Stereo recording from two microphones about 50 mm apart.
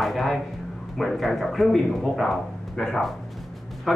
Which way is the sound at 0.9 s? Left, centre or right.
Centre.